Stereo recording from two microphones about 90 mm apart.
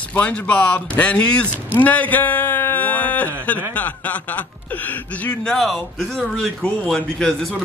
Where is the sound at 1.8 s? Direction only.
15° left (ahead or behind).